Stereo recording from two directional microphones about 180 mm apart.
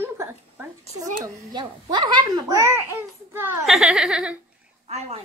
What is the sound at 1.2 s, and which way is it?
A child's voice, 25° right (ahead or behind).